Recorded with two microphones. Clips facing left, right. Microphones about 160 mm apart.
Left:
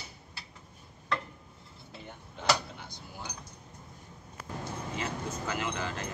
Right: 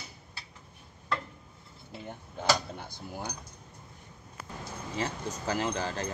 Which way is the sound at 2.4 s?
50° right (ahead or behind).